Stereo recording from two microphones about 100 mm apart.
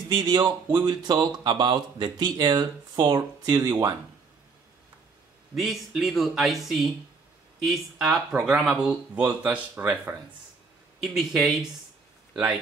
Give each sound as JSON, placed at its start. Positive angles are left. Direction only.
{"t": 0.1, "sound": "speech", "side_deg": -45}
{"t": 5.5, "sound": "speech", "side_deg": 0}
{"t": 11.0, "sound": "speech", "side_deg": 0}